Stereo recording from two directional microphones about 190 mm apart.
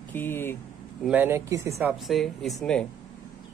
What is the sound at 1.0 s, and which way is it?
Speech, 10° right (ahead or behind).